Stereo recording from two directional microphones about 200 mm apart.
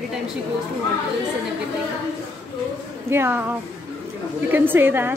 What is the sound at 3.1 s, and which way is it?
A woman's voice, 10° right (ahead or behind).